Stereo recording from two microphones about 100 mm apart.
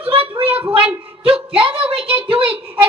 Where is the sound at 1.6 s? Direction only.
70° right (ahead or behind).